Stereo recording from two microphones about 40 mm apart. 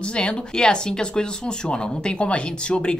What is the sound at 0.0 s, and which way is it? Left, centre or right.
Speech, left.